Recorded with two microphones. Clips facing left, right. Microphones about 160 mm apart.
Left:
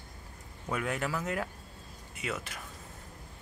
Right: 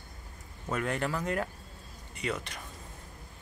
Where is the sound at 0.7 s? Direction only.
5° left (ahead or behind).